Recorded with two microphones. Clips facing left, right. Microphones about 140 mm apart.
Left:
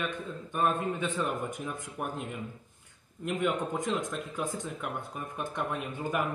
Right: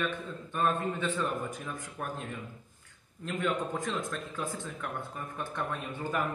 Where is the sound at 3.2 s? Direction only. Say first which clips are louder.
Left 2 dB; 15° left (ahead or behind).